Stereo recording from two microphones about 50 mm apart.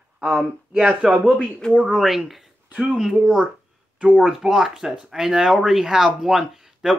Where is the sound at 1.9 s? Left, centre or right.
Centre.